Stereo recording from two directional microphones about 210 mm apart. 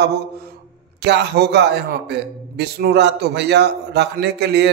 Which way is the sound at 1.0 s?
50° right (ahead or behind).